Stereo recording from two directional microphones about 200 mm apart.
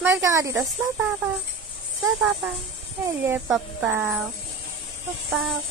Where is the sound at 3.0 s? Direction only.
10° right (ahead or behind).